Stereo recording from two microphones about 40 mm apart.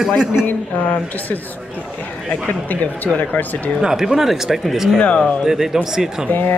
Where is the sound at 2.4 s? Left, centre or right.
Left.